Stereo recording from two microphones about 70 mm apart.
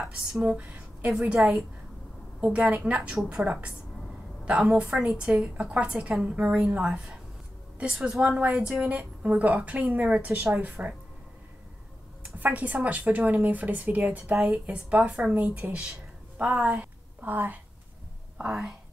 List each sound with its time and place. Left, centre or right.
0.0 s a woman's voice: centre
4.7 s a woman's voice: centre
12.2 s a woman's voice: right
18.4 s a woman's voice: centre